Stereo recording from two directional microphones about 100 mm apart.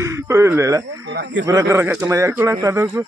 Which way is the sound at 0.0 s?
25° right (ahead or behind).